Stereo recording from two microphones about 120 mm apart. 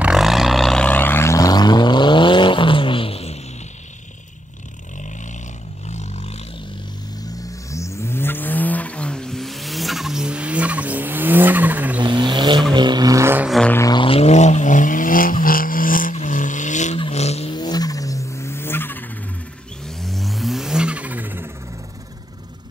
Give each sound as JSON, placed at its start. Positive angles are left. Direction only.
{"t": 0.0, "sound": "vehicle", "side_deg": -5}
{"t": 0.8, "sound": "vehicle", "side_deg": 15}
{"t": 5.9, "sound": "a sound", "side_deg": 75}
{"t": 7.3, "sound": "vehicle", "side_deg": 25}
{"t": 12.0, "sound": "vehicle", "side_deg": -40}
{"t": 13.8, "sound": "vehicle", "side_deg": 45}
{"t": 16.1, "sound": "vehicle", "side_deg": 90}
{"t": 17.1, "sound": "vehicle", "side_deg": 65}
{"t": 17.5, "sound": "vehicle", "side_deg": 35}
{"t": 20.0, "sound": "vehicle", "side_deg": 0}